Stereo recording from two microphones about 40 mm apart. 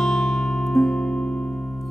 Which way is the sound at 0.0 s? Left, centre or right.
Centre.